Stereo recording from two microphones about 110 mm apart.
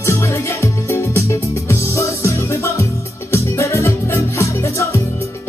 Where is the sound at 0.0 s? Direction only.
25° left (ahead or behind).